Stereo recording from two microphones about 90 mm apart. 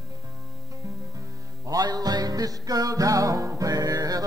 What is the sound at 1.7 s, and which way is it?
Music, 45° right (ahead or behind).